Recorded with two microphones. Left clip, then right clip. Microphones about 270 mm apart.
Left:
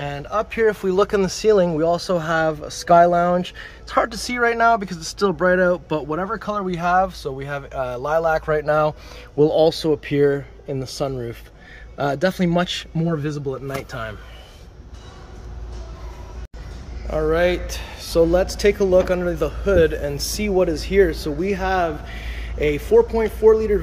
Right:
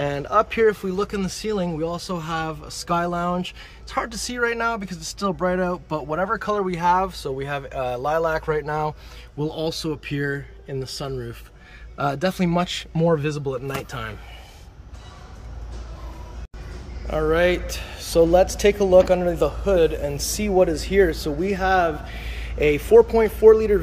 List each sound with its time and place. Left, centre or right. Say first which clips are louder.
0.0 s speech: right 4 dB; centre
9.4 s speech: left 11 dB; centre
10.2 s speech: left 9 dB; left
10.9 s speech: left 5 dB; centre
12.0 s speech: left 3 dB; centre
17.1 s speech: left 1 dB; centre